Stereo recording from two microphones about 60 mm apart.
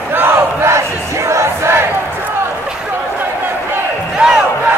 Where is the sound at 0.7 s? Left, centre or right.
Right.